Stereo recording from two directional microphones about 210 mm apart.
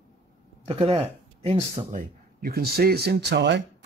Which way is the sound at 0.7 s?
25° right (ahead or behind).